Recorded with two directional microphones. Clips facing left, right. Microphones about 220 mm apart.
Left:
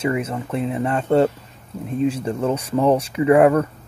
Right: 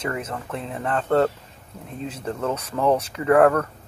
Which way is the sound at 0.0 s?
10° left (ahead or behind).